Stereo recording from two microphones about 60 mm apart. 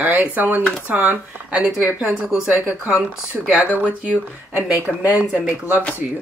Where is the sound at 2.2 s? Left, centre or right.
Centre.